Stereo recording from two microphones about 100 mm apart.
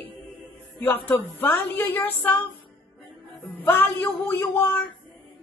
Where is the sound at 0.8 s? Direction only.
20° left (ahead or behind).